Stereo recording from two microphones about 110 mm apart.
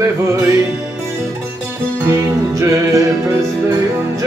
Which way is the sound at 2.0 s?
25° right (ahead or behind).